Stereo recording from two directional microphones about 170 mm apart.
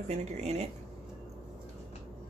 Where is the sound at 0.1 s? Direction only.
40° right (ahead or behind).